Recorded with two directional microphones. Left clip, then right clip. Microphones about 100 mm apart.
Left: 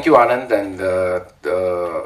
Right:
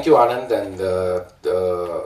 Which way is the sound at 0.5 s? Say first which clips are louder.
Left 3 dB; 40° left (ahead or behind).